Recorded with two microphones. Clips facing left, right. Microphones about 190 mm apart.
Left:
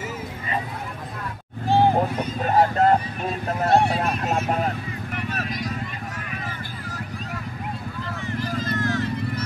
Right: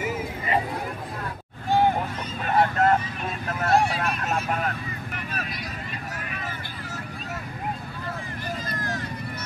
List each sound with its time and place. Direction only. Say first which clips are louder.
1.7 s vehicle: left 3 dB; 30° left (ahead or behind)
8.7 s vehicle: left 7 dB; 35° right (ahead or behind)